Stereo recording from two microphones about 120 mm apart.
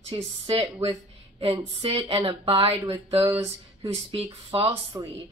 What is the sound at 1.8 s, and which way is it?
Speech, 50° right (ahead or behind).